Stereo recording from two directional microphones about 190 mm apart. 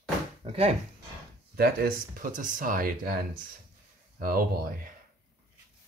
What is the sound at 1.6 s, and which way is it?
Speech, 50° right (ahead or behind).